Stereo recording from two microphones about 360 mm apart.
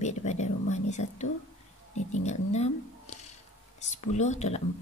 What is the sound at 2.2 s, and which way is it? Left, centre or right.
Speech, centre.